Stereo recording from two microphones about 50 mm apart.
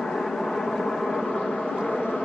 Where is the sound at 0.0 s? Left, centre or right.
Centre.